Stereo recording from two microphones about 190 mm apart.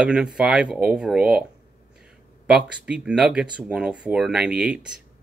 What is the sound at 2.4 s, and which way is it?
A man's voice, 5° right (ahead or behind).